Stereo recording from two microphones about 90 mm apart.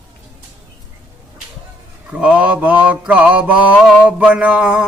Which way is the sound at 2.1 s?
10° right (ahead or behind).